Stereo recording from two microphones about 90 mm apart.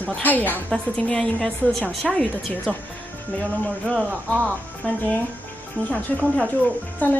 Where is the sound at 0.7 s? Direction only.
10° left (ahead or behind).